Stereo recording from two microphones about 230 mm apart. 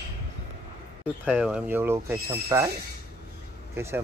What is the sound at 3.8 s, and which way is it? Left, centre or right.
Speech, centre.